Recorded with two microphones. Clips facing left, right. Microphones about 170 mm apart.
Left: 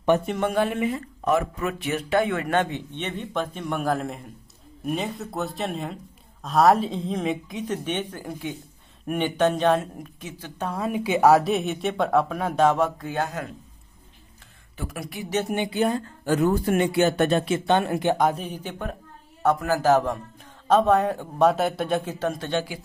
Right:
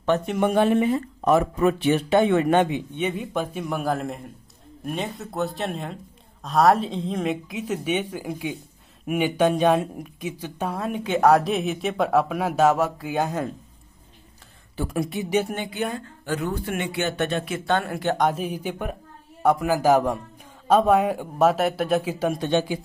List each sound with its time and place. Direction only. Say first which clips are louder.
0.4 s a man's voice: right 4 dB; 20° right (ahead or behind)
10.7 s speech: left 2 dB; centre (ahead or behind); by 13.5 s 20° right (ahead or behind)
14.8 s speech: right 7 dB; 30° right (ahead or behind)
15.7 s speech: left 5 dB; 35° left (ahead or behind)
17.6 s speech: left 1 dB; 20° left (ahead or behind)
18.1 s speech: right 2 dB; centre (ahead or behind)
18.4 s a man's voice: right 4 dB; 10° right (ahead or behind)